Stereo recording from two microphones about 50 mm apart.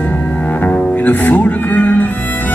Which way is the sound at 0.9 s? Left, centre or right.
Left.